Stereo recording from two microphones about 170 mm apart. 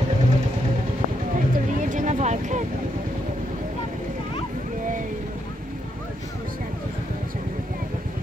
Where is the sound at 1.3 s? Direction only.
50° right (ahead or behind).